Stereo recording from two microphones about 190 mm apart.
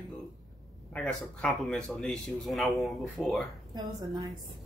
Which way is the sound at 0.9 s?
Centre (ahead or behind).